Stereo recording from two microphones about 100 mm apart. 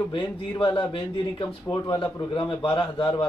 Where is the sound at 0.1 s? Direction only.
60° left (ahead or behind).